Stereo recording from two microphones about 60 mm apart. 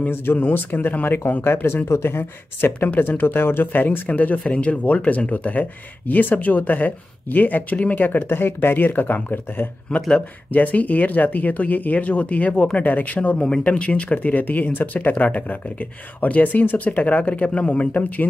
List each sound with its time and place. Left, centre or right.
0.0 s speech: left